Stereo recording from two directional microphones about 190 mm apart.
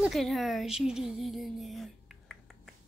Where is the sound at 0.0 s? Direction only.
Centre (ahead or behind).